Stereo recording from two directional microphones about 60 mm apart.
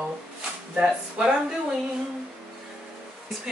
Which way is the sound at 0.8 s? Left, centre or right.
Centre.